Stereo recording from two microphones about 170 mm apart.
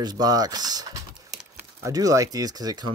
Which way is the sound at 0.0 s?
25° right (ahead or behind).